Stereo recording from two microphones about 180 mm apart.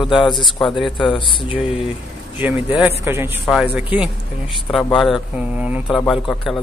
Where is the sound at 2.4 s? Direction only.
10° right (ahead or behind).